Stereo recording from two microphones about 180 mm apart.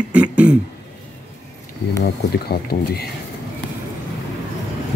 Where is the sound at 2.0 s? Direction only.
60° left (ahead or behind).